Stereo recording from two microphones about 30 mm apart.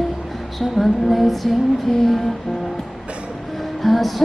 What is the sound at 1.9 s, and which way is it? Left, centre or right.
Music, centre.